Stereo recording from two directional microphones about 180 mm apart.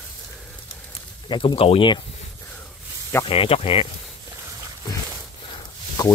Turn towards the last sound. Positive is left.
turn(degrees=20)  # may be behind; listen again after turning